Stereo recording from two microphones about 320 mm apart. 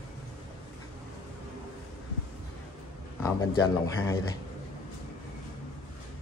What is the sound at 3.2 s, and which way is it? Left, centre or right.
Speech, centre.